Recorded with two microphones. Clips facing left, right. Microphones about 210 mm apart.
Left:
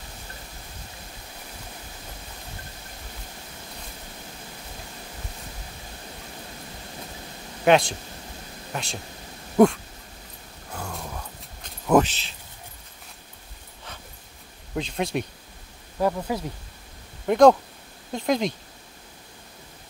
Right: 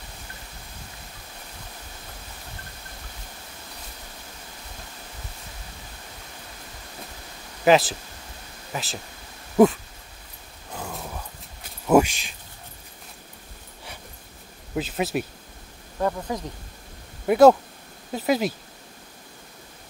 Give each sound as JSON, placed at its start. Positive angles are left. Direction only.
{"t": 7.6, "sound": "a man's voice", "side_deg": 0}
{"t": 10.7, "sound": "dog", "side_deg": -5}
{"t": 11.6, "sound": "a sound", "side_deg": -10}
{"t": 14.8, "sound": "a man's voice", "side_deg": -5}
{"t": 16.0, "sound": "speech", "side_deg": 10}
{"t": 17.3, "sound": "a man's voice", "side_deg": -5}